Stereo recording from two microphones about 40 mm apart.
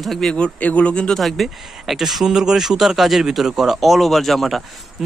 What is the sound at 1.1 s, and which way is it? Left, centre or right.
A man's voice, centre.